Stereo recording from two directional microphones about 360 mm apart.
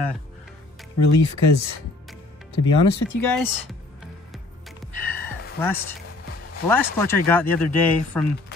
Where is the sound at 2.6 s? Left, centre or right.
Left.